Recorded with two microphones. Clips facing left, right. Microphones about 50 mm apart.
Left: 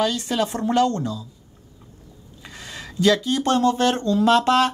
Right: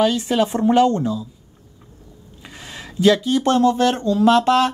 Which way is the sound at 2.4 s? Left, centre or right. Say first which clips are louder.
Right 1 dB; centre.